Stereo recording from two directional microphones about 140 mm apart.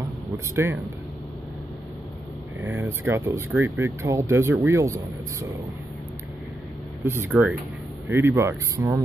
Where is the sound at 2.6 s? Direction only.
15° right (ahead or behind).